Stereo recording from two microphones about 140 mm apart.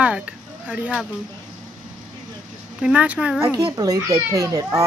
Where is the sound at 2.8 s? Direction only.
10° right (ahead or behind).